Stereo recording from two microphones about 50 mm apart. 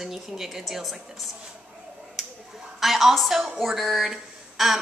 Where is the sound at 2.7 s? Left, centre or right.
Centre.